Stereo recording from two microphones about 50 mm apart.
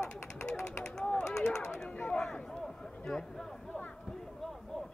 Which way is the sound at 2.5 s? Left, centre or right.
Centre.